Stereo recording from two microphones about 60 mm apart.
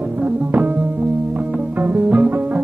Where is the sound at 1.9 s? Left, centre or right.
Right.